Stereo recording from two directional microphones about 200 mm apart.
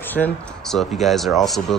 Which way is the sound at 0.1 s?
5° left (ahead or behind).